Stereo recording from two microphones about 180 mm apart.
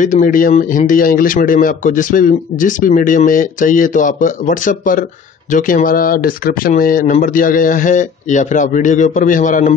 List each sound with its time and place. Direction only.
0.0 s speech: 45° left (ahead or behind)